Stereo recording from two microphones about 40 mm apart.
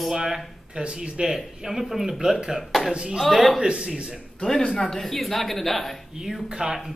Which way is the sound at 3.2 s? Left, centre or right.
Centre.